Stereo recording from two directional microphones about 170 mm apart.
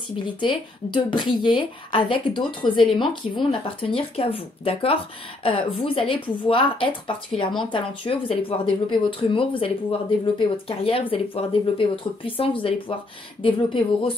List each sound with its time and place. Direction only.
0.4 s a woman's voice: 30° left (ahead or behind)